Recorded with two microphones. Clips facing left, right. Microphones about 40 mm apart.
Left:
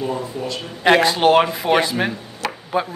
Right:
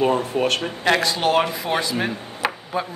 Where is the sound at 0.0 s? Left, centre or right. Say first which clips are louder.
Right 5 dB; right.